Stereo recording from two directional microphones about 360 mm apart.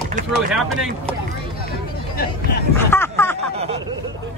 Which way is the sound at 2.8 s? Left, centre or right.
Centre.